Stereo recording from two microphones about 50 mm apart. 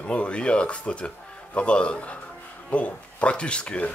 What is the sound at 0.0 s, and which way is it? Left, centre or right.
Speech, left.